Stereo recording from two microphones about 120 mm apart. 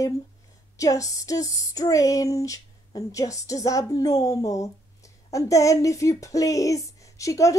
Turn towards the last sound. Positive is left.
turn(degrees=25)  # may be behind; listen again after turning